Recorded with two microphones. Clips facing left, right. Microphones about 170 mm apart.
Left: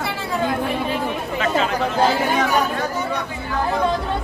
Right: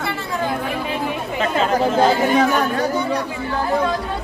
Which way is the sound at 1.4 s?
40° right (ahead or behind).